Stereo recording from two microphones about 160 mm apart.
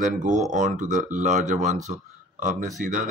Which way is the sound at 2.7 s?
55° right (ahead or behind).